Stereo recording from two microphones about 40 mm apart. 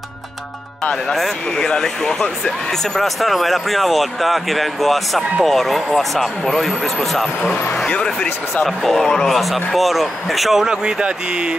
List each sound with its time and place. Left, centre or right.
1.6 s speech: centre
3.0 s speech: centre
7.9 s speech: left
9.2 s speech: centre